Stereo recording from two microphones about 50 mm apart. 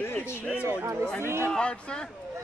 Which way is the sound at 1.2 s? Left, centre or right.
Right.